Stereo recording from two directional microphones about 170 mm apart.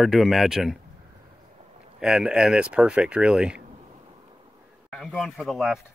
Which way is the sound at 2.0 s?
5° right (ahead or behind).